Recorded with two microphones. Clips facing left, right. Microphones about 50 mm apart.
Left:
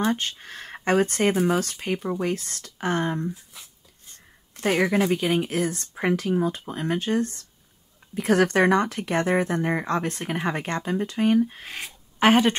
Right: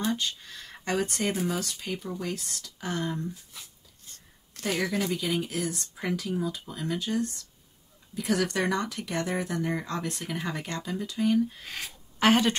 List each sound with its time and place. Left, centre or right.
0.0 s speech: left
4.6 s speech: left
11.7 s speech: left